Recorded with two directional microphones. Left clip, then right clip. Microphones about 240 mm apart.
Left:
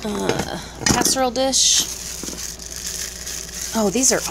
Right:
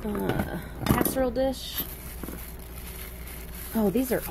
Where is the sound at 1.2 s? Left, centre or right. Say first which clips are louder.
Left 10 dB; left.